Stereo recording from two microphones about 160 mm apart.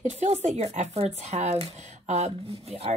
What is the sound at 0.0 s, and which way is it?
Speech, 45° right (ahead or behind).